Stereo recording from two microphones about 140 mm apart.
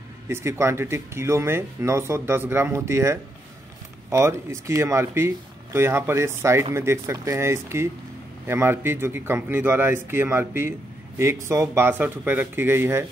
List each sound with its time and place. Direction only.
0.3 s speech: 20° right (ahead or behind)